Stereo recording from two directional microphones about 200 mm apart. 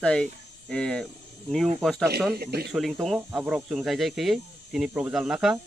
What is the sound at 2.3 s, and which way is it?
Speech, 50° right (ahead or behind).